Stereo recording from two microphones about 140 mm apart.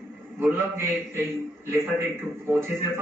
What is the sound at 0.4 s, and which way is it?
Speech, 15° right (ahead or behind).